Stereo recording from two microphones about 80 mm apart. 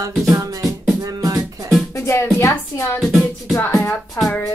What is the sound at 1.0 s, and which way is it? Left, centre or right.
Music, right.